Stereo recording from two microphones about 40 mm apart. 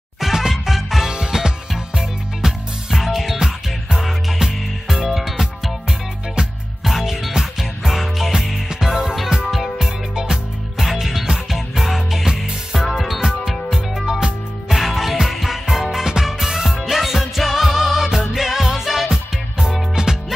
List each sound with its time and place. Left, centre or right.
0.2 s music: centre
1.1 s music: centre
14.7 s music: centre
19.6 s music: centre